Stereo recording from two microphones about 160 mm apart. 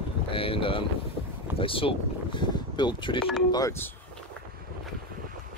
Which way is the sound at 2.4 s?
30° left (ahead or behind).